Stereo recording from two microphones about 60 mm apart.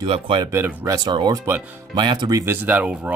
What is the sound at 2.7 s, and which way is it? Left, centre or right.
Speech, right.